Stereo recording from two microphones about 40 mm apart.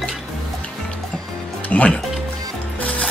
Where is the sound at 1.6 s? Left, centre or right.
Left.